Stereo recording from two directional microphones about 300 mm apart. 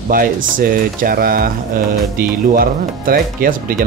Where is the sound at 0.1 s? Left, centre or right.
Right.